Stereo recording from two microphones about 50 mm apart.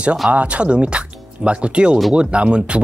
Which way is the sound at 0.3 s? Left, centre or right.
Right.